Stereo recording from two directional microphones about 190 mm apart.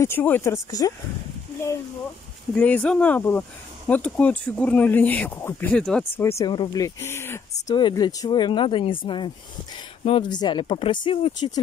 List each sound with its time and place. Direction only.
0.0 s speech: 10° left (ahead or behind)
2.5 s speech: 5° left (ahead or behind); by 11.6 s 25° left (ahead or behind)